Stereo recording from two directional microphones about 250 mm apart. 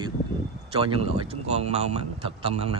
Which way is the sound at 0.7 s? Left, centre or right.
Right.